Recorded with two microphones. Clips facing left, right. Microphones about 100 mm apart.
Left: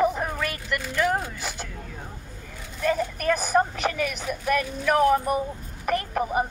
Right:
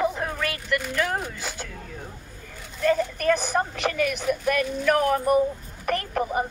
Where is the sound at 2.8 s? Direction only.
10° left (ahead or behind).